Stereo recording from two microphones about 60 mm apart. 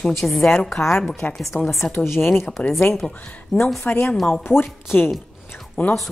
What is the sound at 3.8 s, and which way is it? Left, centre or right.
Speech, left.